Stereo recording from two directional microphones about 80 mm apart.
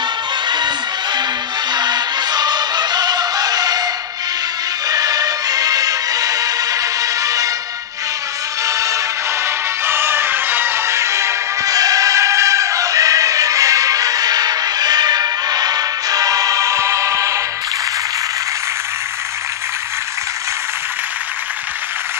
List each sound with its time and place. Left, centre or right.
0.5 s a sound: right
1.7 s music: right
8.6 s music: right
9.8 s music: right